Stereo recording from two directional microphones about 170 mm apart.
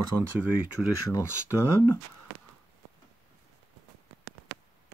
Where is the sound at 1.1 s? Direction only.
15° left (ahead or behind).